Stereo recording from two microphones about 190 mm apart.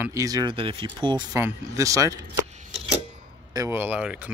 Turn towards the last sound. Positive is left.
turn(degrees=-5)  # may be behind; listen again after turning